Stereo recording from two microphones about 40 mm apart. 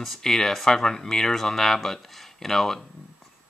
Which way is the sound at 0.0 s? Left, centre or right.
Centre.